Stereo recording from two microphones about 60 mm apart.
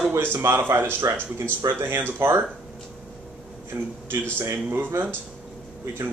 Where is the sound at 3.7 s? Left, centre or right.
Right.